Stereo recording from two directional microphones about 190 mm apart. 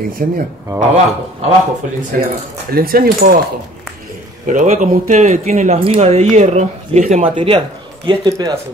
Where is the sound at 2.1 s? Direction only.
45° right (ahead or behind).